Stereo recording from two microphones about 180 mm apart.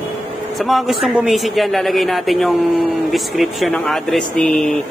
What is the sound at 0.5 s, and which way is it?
Speech, centre (ahead or behind).